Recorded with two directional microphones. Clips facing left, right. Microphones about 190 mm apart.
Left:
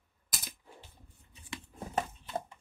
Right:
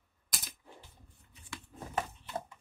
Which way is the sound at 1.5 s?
25° left (ahead or behind).